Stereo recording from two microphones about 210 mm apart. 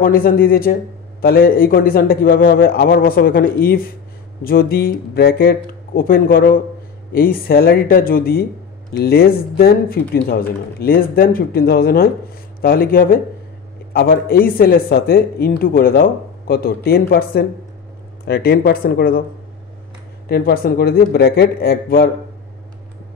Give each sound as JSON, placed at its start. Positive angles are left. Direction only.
{"t": 0.0, "sound": "speech", "side_deg": 45}
{"t": 20.2, "sound": "speech", "side_deg": 45}